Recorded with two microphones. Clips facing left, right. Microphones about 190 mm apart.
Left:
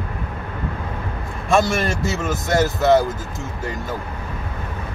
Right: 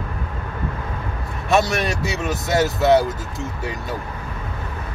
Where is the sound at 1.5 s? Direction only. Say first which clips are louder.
Left 1 dB; centre (ahead or behind).